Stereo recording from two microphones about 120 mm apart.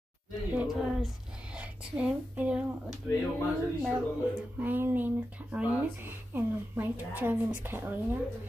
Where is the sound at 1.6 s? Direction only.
10° right (ahead or behind).